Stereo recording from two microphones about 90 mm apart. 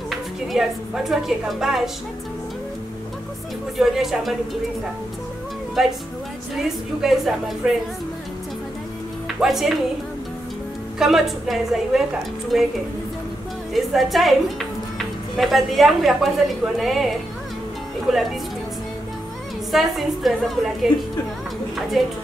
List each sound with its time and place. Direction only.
0.1 s a woman's voice: centre (ahead or behind)
3.7 s a woman's voice: 5° right (ahead or behind)
5.8 s a woman's voice: 5° right (ahead or behind)
9.4 s a woman's voice: 5° right (ahead or behind)
11.0 s a woman's voice: 5° right (ahead or behind)
13.7 s a woman's voice: centre (ahead or behind)
19.7 s a woman's voice: centre (ahead or behind)